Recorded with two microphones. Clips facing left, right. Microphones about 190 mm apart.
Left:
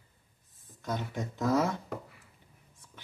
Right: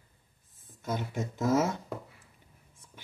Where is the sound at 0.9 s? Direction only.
10° right (ahead or behind).